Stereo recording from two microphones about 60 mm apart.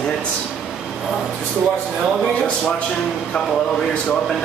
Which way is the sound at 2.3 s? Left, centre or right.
Centre.